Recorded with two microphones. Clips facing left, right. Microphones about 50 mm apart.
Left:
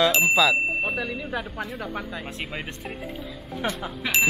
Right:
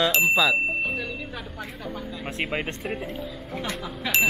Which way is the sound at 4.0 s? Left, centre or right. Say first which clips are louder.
Even; centre.